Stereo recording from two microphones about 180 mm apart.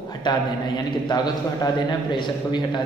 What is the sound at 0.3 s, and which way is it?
A man's voice, 25° left (ahead or behind).